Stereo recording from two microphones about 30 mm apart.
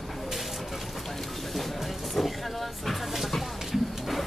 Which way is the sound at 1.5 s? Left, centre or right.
Centre.